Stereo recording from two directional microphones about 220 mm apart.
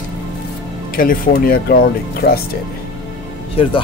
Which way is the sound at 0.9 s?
40° left (ahead or behind).